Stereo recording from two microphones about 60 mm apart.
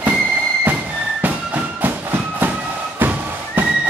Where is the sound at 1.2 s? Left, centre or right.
Right.